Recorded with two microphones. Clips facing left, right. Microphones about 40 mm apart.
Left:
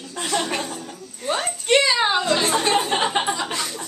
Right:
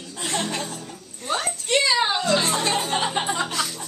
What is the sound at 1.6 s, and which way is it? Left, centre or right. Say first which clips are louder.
Speech: left 5 dB; left.